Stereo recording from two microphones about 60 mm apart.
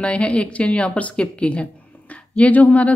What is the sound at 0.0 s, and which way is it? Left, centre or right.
A woman's voice, centre.